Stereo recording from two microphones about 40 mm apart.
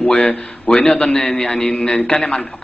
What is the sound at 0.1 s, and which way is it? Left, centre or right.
A man's voice, left.